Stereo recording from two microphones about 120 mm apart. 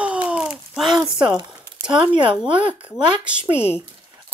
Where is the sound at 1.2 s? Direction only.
40° right (ahead or behind).